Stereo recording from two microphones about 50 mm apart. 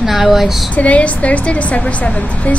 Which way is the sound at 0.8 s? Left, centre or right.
Left.